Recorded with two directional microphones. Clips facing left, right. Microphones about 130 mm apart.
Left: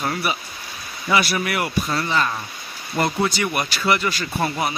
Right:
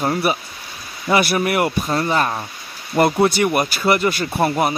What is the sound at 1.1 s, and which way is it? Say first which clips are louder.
Speech: right 4 dB; 50° right (ahead or behind).